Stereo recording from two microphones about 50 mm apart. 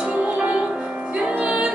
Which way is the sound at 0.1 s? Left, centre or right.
Right.